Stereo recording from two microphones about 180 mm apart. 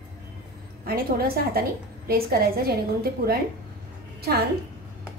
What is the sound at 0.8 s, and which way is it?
A woman's voice, 55° right (ahead or behind).